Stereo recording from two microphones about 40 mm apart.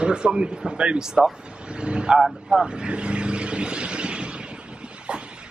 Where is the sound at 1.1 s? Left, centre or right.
Centre.